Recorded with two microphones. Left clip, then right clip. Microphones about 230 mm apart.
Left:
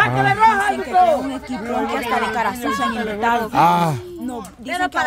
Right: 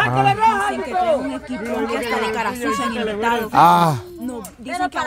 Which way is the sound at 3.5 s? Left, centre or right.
Centre.